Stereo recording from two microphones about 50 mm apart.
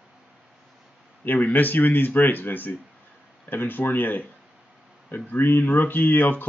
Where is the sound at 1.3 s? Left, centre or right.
Left.